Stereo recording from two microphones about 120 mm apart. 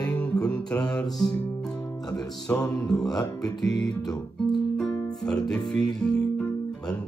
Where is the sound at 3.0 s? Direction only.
35° left (ahead or behind).